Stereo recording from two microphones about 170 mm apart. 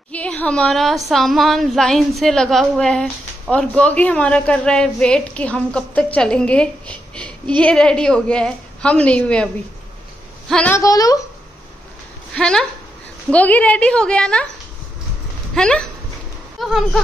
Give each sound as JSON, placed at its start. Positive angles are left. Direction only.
{"t": 0.1, "sound": "a woman's voice", "side_deg": 10}
{"t": 10.5, "sound": "a woman's voice", "side_deg": 5}
{"t": 10.8, "sound": "a woman's voice", "side_deg": 20}
{"t": 12.4, "sound": "a woman's voice", "side_deg": 5}
{"t": 15.5, "sound": "a woman's voice", "side_deg": 5}